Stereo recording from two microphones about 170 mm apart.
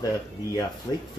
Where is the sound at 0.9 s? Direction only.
25° left (ahead or behind).